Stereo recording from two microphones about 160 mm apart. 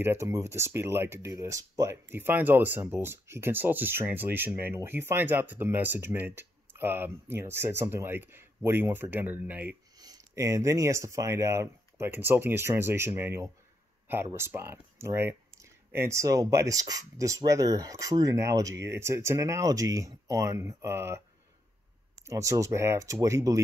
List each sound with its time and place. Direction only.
0.0 s speech: 15° right (ahead or behind)
9.9 s speech: 25° right (ahead or behind)
22.2 s speech: 20° right (ahead or behind)